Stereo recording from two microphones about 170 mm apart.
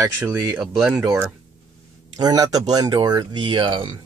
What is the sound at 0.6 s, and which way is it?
Speech, 5° right (ahead or behind).